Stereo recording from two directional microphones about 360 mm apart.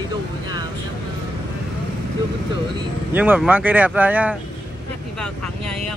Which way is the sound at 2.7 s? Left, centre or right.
Centre.